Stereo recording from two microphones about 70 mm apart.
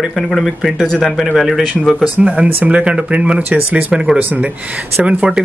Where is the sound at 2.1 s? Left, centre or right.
Centre.